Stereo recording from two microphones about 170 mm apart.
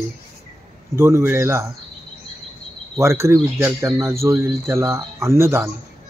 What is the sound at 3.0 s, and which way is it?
Speech, 15° right (ahead or behind).